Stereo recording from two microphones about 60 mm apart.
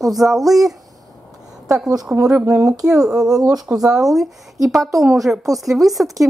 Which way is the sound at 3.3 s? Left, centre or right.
Right.